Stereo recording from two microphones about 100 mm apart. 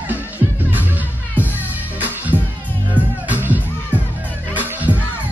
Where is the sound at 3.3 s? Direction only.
15° right (ahead or behind).